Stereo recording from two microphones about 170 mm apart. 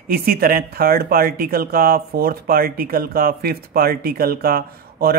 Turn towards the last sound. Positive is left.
turn(degrees=-60)  # may be behind; listen again after turning